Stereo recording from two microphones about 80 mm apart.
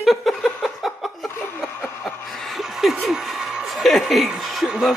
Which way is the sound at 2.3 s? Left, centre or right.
Centre.